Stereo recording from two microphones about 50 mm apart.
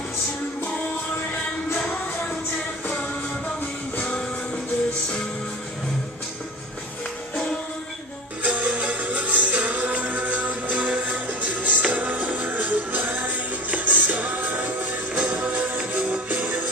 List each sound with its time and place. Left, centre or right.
4.0 s music: left
8.4 s music: right